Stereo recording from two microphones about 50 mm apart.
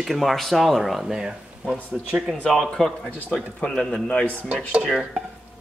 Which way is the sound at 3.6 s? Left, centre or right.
Centre.